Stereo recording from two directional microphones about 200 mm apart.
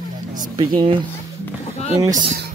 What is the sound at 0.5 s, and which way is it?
Speech, 20° right (ahead or behind).